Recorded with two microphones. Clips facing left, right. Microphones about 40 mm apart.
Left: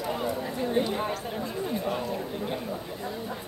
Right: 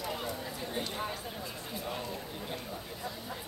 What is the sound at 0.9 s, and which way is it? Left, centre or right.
Chatter, left.